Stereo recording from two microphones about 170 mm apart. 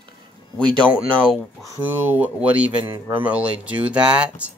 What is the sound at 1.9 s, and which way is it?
Speech, 10° right (ahead or behind).